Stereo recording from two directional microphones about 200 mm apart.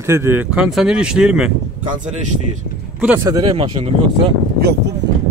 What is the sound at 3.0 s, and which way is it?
Speech, 10° right (ahead or behind).